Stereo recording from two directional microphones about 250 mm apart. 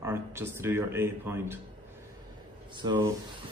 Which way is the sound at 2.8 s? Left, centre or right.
Centre.